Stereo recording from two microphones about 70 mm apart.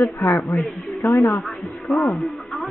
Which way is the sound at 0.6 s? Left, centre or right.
Centre.